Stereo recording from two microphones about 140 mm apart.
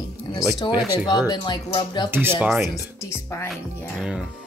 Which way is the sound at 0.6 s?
35° left (ahead or behind).